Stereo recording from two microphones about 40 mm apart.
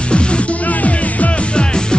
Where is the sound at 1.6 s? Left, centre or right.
Left.